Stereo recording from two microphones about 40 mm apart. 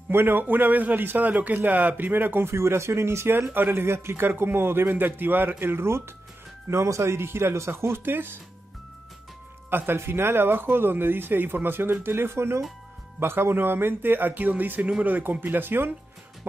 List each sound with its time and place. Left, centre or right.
0.1 s a man's voice: right
9.7 s a man's voice: right
14.8 s speech: right
15.0 s speech: right
15.4 s a man's voice: right